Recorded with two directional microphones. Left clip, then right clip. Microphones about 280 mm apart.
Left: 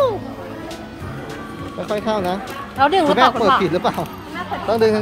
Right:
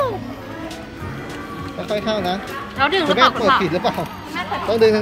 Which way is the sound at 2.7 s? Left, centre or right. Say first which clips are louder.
Left 3 dB; left.